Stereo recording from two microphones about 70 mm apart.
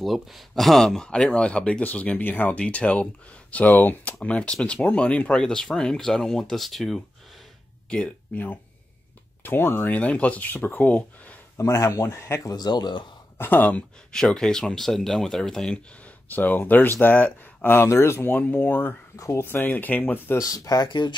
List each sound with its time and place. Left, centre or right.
0.0 s speech: centre
7.9 s speech: left
11.5 s speech: left
12.4 s speech: left
13.4 s speech: left
14.1 s speech: centre
16.3 s speech: left
18.3 s speech: left
19.1 s speech: left
19.4 s speech: left
20.3 s speech: left